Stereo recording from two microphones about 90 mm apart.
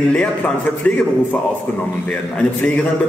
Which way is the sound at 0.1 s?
15° left (ahead or behind).